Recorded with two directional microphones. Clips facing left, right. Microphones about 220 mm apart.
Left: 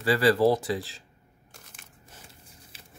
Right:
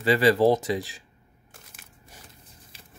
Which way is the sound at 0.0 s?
20° right (ahead or behind).